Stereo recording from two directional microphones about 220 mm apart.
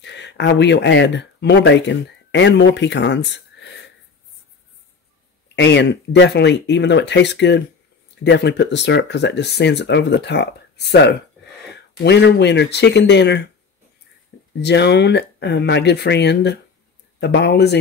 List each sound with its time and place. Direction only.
0.0 s speech: 50° left (ahead or behind)
5.6 s speech: 55° left (ahead or behind)
11.7 s speech: 50° left (ahead or behind)
14.6 s speech: 50° left (ahead or behind)